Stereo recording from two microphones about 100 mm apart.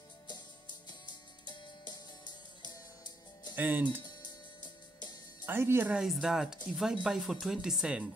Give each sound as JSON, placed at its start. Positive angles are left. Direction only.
{"t": 1.4, "sound": "music", "side_deg": 50}
{"t": 3.5, "sound": "speech", "side_deg": -20}
{"t": 4.0, "sound": "music", "side_deg": 45}
{"t": 5.4, "sound": "speech", "side_deg": -25}
{"t": 5.9, "sound": "speech", "side_deg": -5}